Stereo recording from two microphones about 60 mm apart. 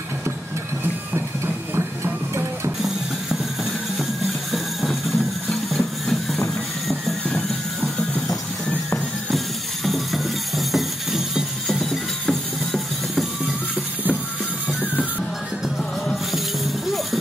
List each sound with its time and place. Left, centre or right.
1.8 s music: right
4.5 s music: centre
6.9 s a sound: centre
9.8 s music: centre